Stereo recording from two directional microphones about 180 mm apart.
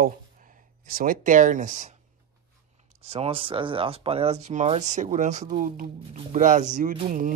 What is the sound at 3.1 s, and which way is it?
Speech, 30° right (ahead or behind).